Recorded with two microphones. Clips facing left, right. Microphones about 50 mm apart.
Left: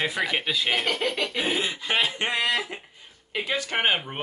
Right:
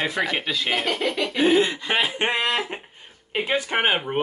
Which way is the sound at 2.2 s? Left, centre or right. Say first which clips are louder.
Right 2 dB; right.